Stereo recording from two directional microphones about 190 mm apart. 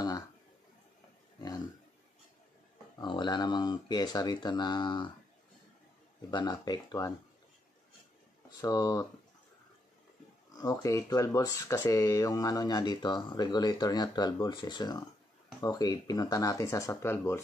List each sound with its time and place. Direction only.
3.0 s speech: 25° left (ahead or behind)
6.3 s speech: 20° left (ahead or behind)
8.5 s speech: 20° left (ahead or behind)
10.5 s speech: 20° left (ahead or behind)